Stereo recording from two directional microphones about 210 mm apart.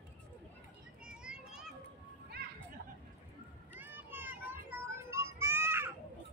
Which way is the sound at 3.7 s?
10° right (ahead or behind).